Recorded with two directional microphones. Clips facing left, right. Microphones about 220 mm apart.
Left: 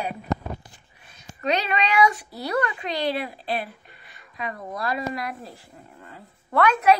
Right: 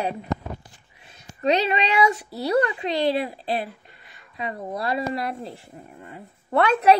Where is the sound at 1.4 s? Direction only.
30° right (ahead or behind).